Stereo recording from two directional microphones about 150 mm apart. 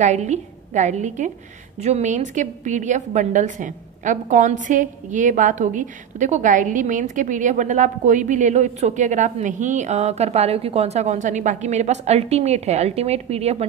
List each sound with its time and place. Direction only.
0.0 s a woman's voice: 50° right (ahead or behind)